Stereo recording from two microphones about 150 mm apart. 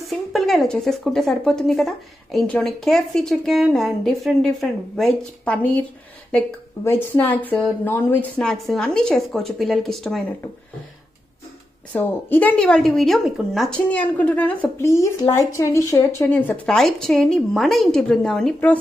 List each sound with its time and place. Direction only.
0.0 s speech: centre (ahead or behind)
11.9 s a woman's voice: 10° left (ahead or behind)
16.6 s speech: 5° left (ahead or behind)